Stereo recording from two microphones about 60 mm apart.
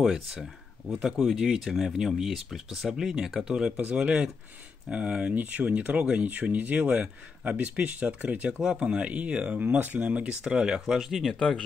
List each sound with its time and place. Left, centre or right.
0.0 s speech: centre
5.3 s speech: right; by 11.3 s centre
11.3 s speech: centre